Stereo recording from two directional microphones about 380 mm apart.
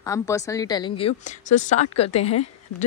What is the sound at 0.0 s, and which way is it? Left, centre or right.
A woman's voice, centre.